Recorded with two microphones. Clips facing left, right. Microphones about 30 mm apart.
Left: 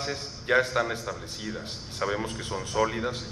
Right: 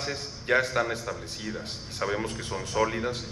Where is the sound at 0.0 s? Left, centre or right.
Centre.